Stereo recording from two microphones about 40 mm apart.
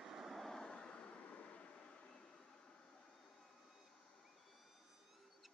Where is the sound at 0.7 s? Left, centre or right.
Left.